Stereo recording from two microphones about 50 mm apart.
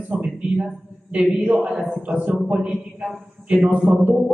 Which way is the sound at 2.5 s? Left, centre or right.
Right.